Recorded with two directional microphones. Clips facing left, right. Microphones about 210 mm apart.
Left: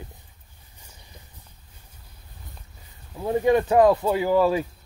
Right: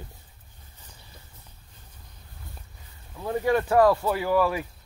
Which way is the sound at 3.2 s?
20° left (ahead or behind).